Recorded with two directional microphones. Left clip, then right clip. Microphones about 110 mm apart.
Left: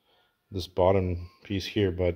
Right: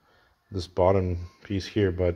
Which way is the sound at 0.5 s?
35° left (ahead or behind).